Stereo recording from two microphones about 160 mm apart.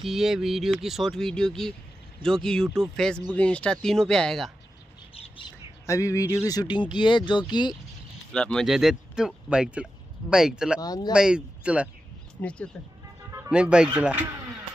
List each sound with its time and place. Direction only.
0.0 s speech: 5° right (ahead or behind)
5.1 s bird: 35° left (ahead or behind)
5.9 s speech: 20° left (ahead or behind)
8.3 s speech: 5° left (ahead or behind)
10.8 s speech: 25° left (ahead or behind)
11.1 s speech: 5° right (ahead or behind)
12.4 s speech: 5° left (ahead or behind)
13.5 s speech: 5° right (ahead or behind)